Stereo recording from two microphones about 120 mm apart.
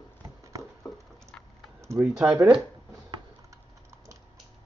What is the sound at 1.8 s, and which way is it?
Typing, 20° right (ahead or behind).